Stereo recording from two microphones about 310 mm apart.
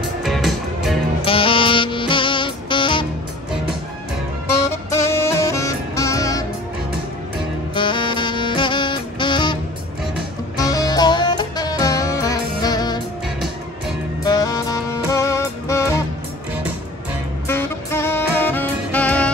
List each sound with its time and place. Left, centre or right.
0.2 s music: centre
1.2 s music: centre
4.6 s music: centre
7.7 s music: centre
10.6 s music: centre
14.2 s music: centre
17.5 s music: centre